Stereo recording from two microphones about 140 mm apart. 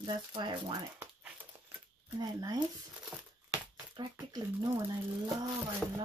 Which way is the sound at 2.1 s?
25° right (ahead or behind).